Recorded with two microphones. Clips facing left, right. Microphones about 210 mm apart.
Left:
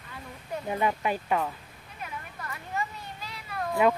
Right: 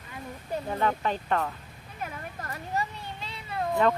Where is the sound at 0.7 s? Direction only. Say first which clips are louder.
Left 1 dB; 10° left (ahead or behind).